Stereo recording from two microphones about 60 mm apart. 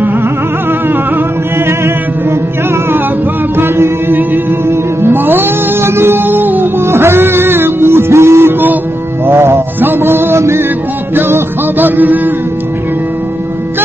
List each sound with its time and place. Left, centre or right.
3.5 s music: right
6.9 s music: right